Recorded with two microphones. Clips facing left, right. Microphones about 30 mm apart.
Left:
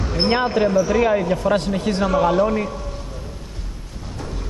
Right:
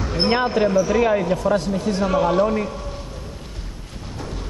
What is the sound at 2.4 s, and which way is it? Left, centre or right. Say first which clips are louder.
Speech: left 1 dB; centre.